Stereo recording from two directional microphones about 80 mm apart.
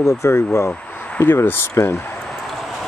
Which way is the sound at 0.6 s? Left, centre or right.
Left.